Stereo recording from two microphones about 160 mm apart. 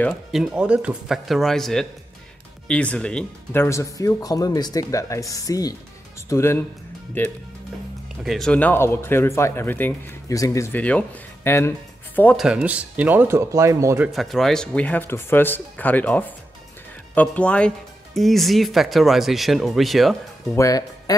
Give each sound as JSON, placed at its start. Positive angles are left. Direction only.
{"t": 0.3, "sound": "speech", "side_deg": -5}
{"t": 3.6, "sound": "speech", "side_deg": 20}
{"t": 8.2, "sound": "speech", "side_deg": 0}
{"t": 12.4, "sound": "speech", "side_deg": -5}
{"t": 14.0, "sound": "speech", "side_deg": 0}
{"t": 20.5, "sound": "speech", "side_deg": 20}